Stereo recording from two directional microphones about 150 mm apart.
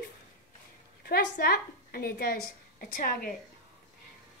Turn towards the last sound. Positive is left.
turn(degrees=70)  # may be behind; listen again after turning